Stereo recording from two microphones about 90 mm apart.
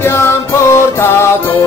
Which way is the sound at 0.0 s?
30° left (ahead or behind).